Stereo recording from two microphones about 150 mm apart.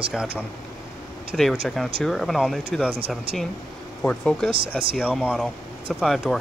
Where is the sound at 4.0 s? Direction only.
10° left (ahead or behind).